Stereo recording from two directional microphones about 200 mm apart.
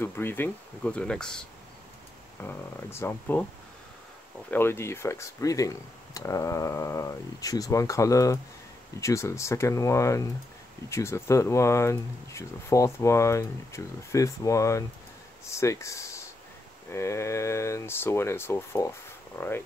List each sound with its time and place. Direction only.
0.0 s speech: 10° left (ahead or behind)
2.4 s speech: 10° left (ahead or behind)
4.5 s speech: 10° left (ahead or behind)